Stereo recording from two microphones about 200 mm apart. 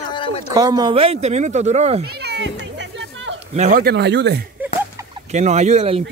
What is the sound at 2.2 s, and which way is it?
Music, 55° right (ahead or behind).